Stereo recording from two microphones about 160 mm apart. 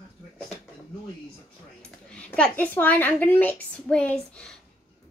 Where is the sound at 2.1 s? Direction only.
5° left (ahead or behind).